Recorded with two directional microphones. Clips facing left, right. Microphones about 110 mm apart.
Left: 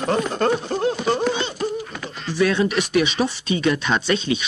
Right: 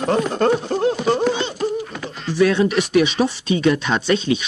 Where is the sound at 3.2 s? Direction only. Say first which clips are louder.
Right 3 dB; 30° right (ahead or behind).